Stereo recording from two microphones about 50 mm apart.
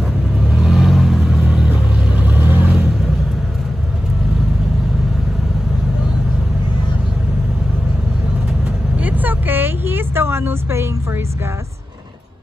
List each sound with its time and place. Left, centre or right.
0.5 s vehicle: centre
2.1 s vehicle: right
8.9 s vehicle: right